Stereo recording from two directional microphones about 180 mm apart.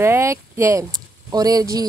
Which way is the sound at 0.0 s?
15° right (ahead or behind).